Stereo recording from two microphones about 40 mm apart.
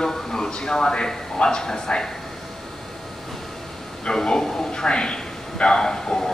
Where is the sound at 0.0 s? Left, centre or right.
Centre.